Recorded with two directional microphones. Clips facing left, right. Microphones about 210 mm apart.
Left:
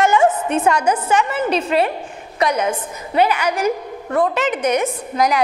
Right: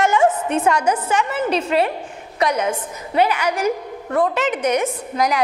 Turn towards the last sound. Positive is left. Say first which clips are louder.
# left 2 dB
turn(degrees=15)  # may be behind; listen again after turning